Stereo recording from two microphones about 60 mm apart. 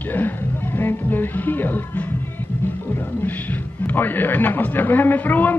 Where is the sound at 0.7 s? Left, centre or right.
Left.